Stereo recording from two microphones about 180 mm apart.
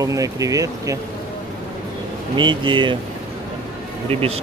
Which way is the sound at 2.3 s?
25° right (ahead or behind).